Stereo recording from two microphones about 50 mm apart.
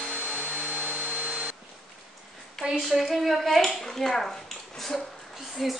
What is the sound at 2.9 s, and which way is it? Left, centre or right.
A woman's voice, centre.